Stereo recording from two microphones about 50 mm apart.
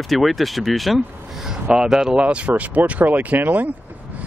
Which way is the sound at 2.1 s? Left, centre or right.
Right.